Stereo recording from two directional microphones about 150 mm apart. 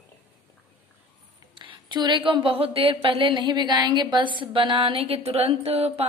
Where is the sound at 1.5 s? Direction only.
30° right (ahead or behind).